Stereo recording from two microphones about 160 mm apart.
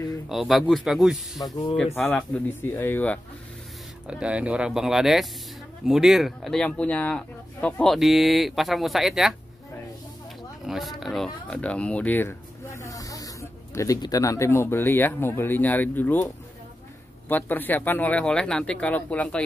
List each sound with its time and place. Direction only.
0.3 s speech: centre (ahead or behind)
2.0 s speech: 10° left (ahead or behind)
4.1 s speech: 5° right (ahead or behind)
10.7 s speech: centre (ahead or behind)
17.3 s speech: 10° left (ahead or behind)